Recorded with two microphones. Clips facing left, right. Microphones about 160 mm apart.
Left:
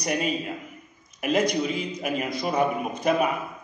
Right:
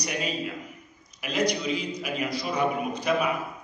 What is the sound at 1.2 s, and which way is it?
A man's voice, 50° left (ahead or behind).